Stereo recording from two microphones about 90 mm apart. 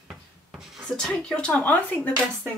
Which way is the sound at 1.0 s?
10° left (ahead or behind).